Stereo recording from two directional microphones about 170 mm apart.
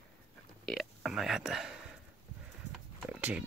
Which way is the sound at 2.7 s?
5° right (ahead or behind).